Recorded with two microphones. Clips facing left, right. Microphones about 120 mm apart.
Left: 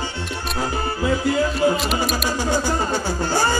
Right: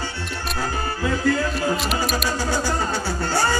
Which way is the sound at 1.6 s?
Centre (ahead or behind).